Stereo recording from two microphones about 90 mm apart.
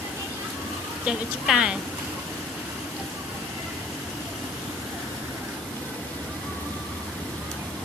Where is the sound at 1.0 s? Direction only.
10° right (ahead or behind).